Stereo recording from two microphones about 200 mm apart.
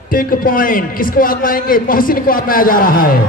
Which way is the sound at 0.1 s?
45° left (ahead or behind).